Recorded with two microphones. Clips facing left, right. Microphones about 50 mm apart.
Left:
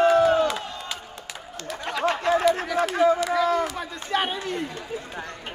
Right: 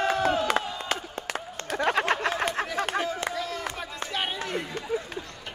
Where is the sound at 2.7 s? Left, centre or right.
Right.